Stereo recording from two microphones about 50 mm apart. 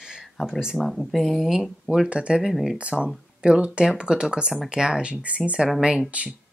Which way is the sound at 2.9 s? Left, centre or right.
Centre.